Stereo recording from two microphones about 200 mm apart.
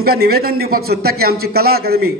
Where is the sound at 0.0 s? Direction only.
50° right (ahead or behind).